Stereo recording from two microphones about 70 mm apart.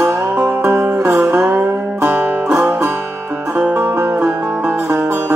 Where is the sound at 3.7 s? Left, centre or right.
Right.